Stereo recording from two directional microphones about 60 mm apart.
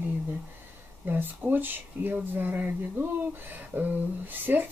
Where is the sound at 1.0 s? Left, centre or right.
Right.